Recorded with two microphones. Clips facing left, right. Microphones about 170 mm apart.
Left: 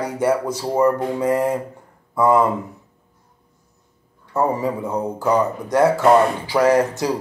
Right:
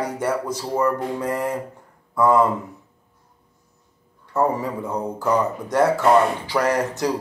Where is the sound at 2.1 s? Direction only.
10° left (ahead or behind).